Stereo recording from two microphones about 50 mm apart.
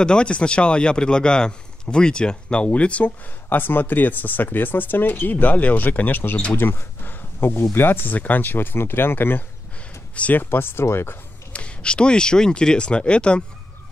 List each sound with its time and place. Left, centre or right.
0.0 s speech: centre
3.4 s speech: left
10.1 s speech: left
10.4 s speech: left
11.5 s speech: left